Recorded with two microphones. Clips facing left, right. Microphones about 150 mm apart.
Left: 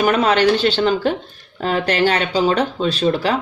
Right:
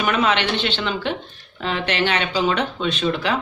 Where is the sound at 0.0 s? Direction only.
40° left (ahead or behind).